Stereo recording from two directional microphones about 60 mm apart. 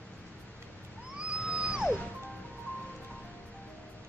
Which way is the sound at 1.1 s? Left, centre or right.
Centre.